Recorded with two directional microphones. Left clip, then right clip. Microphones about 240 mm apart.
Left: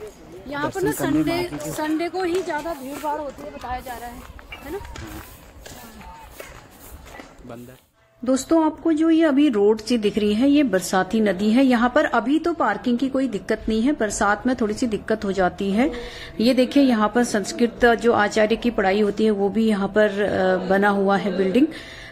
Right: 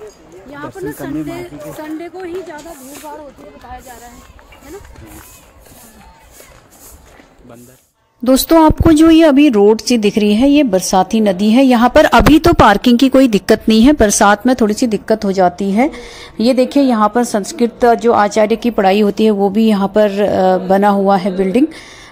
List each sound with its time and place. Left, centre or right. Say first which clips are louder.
0.5 s a woman's voice: left 2 dB; centre
8.2 s speech: right 10 dB; right